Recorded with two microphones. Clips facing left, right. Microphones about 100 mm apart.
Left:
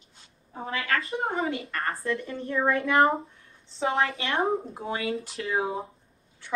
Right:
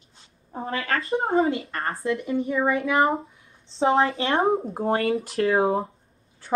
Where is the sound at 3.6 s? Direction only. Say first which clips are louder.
Right 6 dB; 30° right (ahead or behind).